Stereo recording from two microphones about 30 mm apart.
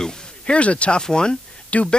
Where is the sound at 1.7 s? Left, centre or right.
Left.